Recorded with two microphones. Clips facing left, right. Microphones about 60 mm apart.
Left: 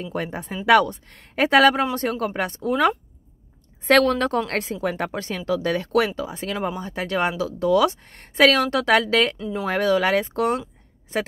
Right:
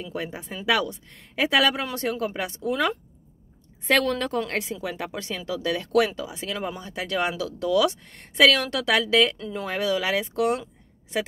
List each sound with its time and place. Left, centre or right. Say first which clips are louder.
0.0 s speech: left 4 dB; left
4.3 s speech: left 3 dB; left
5.1 s speech: left 5 dB; left
9.4 s speech: left 4 dB; centre
9.7 s speech: left 5 dB; left